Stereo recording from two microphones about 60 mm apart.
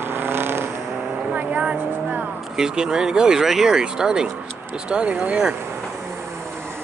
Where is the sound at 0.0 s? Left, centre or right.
Right.